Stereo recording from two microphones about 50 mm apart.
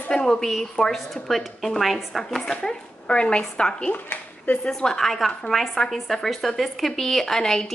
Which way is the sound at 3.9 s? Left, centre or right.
Left.